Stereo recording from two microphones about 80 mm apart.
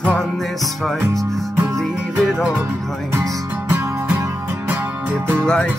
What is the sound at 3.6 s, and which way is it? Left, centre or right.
Music, right.